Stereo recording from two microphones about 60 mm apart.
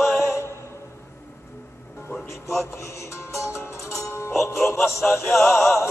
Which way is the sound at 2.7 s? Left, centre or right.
Left.